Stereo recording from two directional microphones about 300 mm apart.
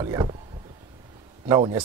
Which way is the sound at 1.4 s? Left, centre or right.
Centre.